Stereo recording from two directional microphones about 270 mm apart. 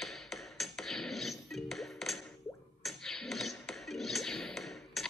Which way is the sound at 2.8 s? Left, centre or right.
Centre.